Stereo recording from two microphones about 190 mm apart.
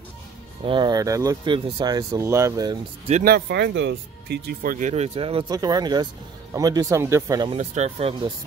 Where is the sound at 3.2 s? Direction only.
55° right (ahead or behind); by 7.5 s 15° right (ahead or behind).